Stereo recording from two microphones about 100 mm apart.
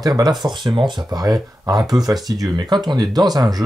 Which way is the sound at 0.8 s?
50° right (ahead or behind).